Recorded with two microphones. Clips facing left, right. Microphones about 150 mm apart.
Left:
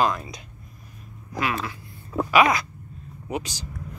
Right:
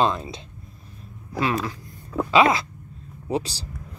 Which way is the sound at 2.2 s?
25° right (ahead or behind).